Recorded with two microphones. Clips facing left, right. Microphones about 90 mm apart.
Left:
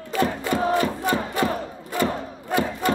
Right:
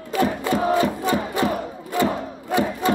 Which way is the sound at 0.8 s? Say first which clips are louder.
Right 2 dB; 20° right (ahead or behind).